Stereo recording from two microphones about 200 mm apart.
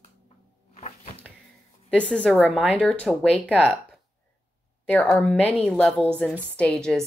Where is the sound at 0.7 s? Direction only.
30° left (ahead or behind).